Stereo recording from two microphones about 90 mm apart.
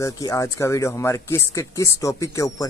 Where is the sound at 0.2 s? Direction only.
40° left (ahead or behind).